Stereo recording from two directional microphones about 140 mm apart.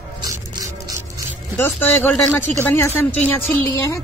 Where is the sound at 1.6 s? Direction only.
15° left (ahead or behind).